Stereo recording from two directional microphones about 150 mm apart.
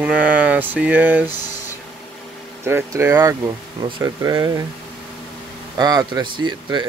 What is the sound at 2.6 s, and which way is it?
Speech, 15° right (ahead or behind).